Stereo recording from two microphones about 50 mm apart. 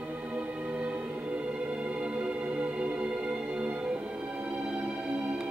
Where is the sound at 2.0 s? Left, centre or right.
Right.